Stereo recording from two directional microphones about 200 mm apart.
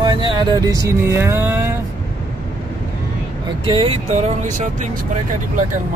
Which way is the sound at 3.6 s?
25° right (ahead or behind).